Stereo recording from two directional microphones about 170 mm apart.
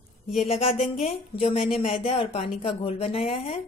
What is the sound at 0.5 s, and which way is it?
A woman's voice, 35° left (ahead or behind).